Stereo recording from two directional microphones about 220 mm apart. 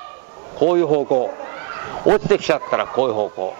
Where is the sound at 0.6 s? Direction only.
30° right (ahead or behind).